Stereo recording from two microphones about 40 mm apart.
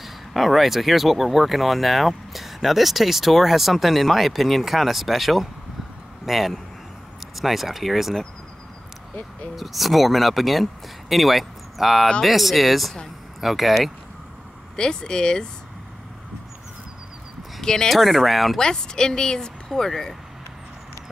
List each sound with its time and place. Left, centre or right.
0.0 s speech: centre
9.6 s speech: centre
14.8 s a woman's voice: centre
17.8 s speech: centre
18.6 s a woman's voice: centre